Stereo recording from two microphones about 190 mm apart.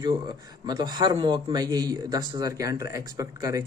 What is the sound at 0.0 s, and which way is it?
Speech, 25° right (ahead or behind).